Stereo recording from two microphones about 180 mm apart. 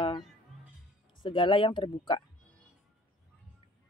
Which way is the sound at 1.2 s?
30° left (ahead or behind).